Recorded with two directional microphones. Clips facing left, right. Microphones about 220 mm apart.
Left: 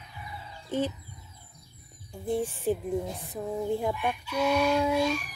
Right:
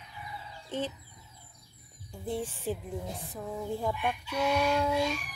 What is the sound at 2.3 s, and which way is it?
Speech, 15° left (ahead or behind).